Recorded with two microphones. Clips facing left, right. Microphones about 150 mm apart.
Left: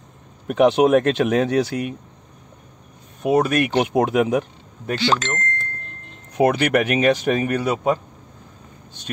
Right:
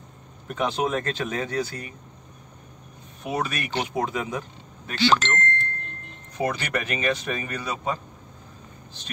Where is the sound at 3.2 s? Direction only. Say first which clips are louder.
Left 11 dB; 55° left (ahead or behind).